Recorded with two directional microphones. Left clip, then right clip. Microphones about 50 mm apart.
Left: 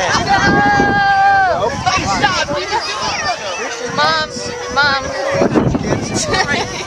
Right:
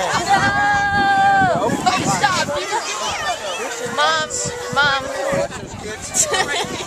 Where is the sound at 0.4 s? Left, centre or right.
Left.